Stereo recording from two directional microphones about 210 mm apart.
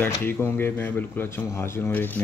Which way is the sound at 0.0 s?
10° left (ahead or behind).